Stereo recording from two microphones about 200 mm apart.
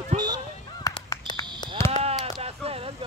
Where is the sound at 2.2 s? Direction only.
30° right (ahead or behind).